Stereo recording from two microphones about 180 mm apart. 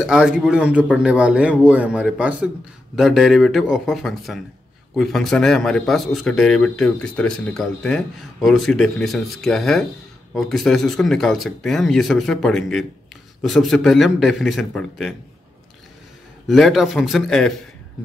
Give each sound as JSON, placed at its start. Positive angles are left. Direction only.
{"t": 0.0, "sound": "speech", "side_deg": -5}
{"t": 16.4, "sound": "speech", "side_deg": 0}